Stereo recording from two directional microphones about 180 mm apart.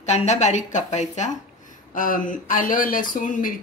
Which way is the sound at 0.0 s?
40° left (ahead or behind).